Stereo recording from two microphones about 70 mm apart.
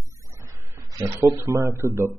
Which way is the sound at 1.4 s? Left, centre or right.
Right.